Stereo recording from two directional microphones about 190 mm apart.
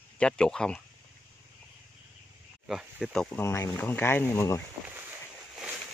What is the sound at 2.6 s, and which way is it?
Speech, 5° right (ahead or behind).